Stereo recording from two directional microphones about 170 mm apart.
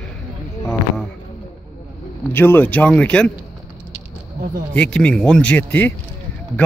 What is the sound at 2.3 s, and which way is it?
Speech, 10° left (ahead or behind).